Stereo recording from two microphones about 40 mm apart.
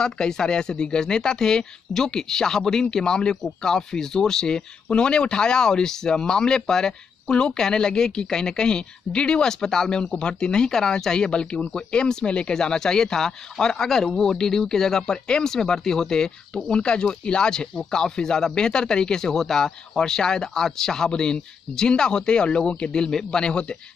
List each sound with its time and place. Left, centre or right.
0.0 s speech: centre